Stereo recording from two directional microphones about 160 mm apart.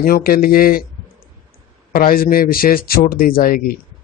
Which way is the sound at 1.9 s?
65° left (ahead or behind).